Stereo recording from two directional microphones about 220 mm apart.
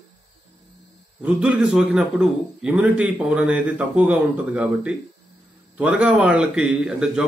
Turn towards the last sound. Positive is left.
turn(degrees=-5)  # may be behind; listen again after turning